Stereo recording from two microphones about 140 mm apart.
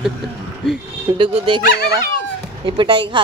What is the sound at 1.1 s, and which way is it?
Speech, 35° right (ahead or behind).